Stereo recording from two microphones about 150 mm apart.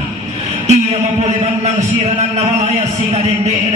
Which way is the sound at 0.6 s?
45° right (ahead or behind).